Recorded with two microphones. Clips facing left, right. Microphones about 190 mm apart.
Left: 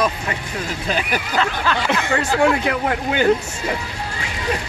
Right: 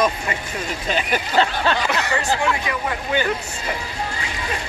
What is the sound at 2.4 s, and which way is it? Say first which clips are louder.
Speech: left 6 dB; 60° left (ahead or behind).